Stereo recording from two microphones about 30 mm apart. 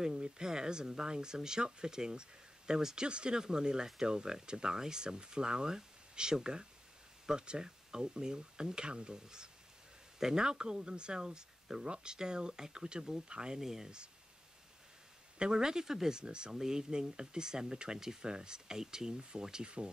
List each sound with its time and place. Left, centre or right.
0.1 s speech: right
3.0 s speech: right; by 10.4 s centre
10.4 s speech: right
13.6 s speech: centre
15.5 s speech: right
16.2 s speech: right